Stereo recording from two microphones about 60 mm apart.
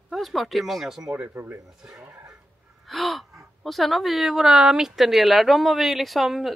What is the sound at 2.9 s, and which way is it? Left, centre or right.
A woman's voice, centre.